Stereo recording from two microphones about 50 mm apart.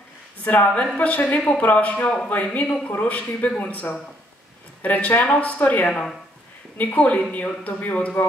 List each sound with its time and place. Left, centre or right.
0.4 s a man's voice: left
4.8 s speech: left